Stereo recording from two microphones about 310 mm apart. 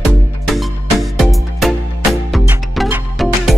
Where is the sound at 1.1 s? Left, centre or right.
Centre.